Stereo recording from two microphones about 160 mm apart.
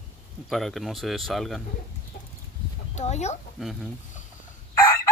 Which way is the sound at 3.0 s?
45° left (ahead or behind).